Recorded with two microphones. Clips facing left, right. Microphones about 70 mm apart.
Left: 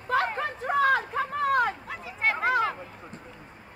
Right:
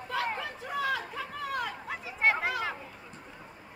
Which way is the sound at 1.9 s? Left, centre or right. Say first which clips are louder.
Right 1 dB; centre.